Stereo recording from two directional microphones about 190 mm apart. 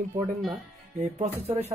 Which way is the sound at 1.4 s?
35° right (ahead or behind).